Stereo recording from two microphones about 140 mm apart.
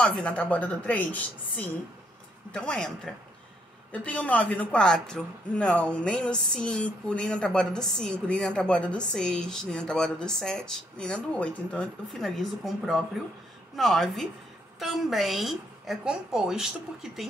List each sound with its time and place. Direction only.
0.0 s a woman's voice: 5° left (ahead or behind)
3.9 s speech: 10° left (ahead or behind)